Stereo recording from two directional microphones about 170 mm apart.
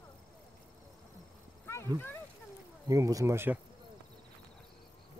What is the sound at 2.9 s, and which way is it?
Speech, 20° right (ahead or behind).